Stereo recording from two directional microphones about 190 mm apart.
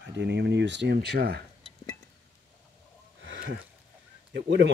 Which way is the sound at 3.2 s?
75° right (ahead or behind).